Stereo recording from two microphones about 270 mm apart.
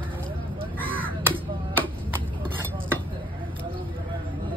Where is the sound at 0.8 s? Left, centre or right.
Centre.